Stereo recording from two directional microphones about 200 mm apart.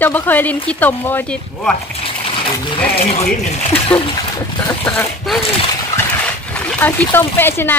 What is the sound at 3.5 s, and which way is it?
Speech, 25° left (ahead or behind).